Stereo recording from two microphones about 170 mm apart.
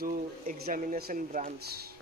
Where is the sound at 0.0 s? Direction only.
55° right (ahead or behind).